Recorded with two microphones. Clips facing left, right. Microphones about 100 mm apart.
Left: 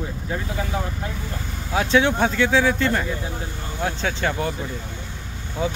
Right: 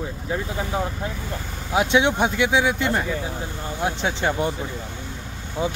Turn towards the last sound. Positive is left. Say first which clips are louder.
# even
turn(degrees=-20)  # may be behind; listen again after turning